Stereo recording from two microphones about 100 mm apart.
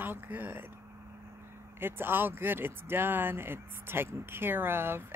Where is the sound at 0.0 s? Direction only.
20° right (ahead or behind).